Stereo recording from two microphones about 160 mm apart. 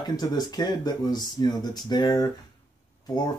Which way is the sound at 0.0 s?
25° left (ahead or behind).